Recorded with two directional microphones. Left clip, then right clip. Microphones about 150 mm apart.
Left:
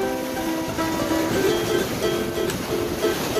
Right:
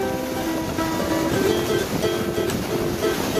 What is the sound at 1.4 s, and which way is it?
Music, centre (ahead or behind).